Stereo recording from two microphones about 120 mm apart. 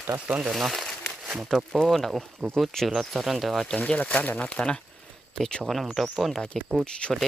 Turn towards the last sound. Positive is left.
turn(degrees=10)  # may be behind; listen again after turning